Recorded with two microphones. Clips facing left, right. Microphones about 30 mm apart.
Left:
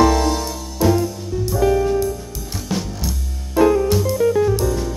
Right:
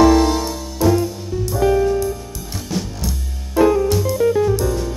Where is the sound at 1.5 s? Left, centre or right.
Centre.